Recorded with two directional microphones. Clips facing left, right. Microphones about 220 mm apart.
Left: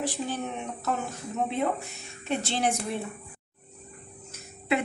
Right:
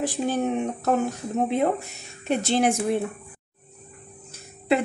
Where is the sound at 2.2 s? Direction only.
45° right (ahead or behind).